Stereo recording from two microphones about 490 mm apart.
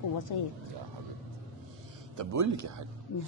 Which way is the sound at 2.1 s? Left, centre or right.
Right.